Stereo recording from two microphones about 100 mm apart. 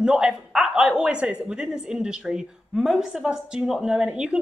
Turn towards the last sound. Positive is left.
turn(degrees=-10)  # may be behind; listen again after turning